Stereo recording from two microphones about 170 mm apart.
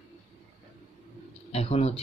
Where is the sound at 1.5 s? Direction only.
35° left (ahead or behind).